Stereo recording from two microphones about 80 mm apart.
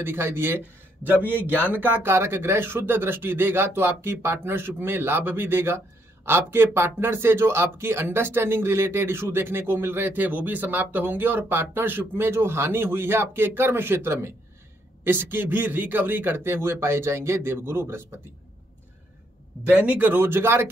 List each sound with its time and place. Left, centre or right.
0.0 s speech: right
1.7 s speech: right
19.6 s speech: right